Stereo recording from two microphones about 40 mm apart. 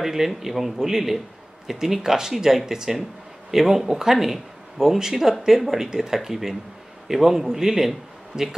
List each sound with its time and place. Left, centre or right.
0.0 s speech: centre